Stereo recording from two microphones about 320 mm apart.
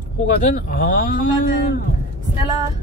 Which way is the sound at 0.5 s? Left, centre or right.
Left.